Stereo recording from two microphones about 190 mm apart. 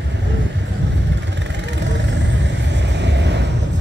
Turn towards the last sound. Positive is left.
turn(degrees=-65)  # may be behind; listen again after turning